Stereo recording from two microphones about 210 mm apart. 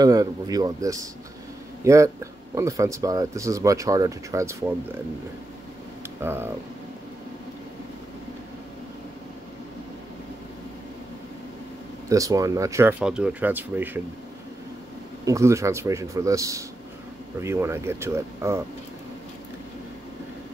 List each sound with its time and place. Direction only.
0.0 s speech: 15° right (ahead or behind)
6.2 s speech: 10° right (ahead or behind)
12.1 s speech: 15° right (ahead or behind)
15.2 s speech: 15° right (ahead or behind)